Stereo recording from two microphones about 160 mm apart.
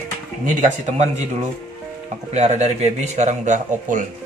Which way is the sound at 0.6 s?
45° right (ahead or behind).